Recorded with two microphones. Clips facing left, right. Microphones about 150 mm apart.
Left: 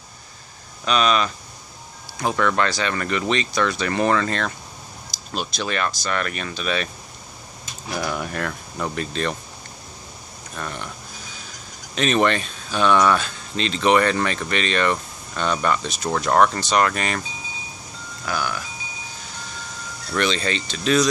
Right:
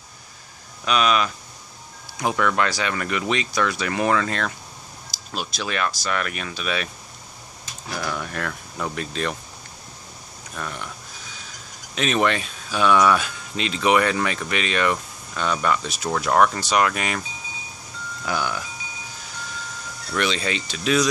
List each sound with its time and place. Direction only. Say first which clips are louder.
0.8 s speech: left 1 dB; 5° right (ahead or behind)
2.3 s speech: left 1 dB; 5° right (ahead or behind)
7.9 s speech: left 2 dB; 15° left (ahead or behind); by 9.4 s 5° right (ahead or behind)
10.5 s speech: left 1 dB; centre (ahead or behind)
11.9 s speech: left 2 dB; centre (ahead or behind)
18.2 s speech: even; 20° right (ahead or behind)
20.1 s speech: left 2 dB; 5° right (ahead or behind)